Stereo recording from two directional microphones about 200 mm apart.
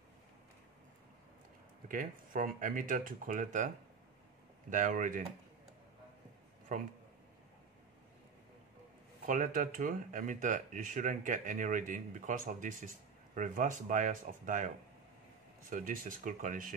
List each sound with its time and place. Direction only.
1.9 s speech: 40° right (ahead or behind)
6.7 s speech: 40° right (ahead or behind)
9.2 s speech: 45° right (ahead or behind)
15.7 s speech: 40° right (ahead or behind)